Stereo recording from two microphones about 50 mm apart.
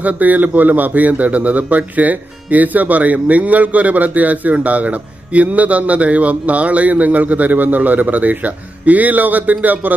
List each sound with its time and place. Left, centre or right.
0.0 s a man's voice: right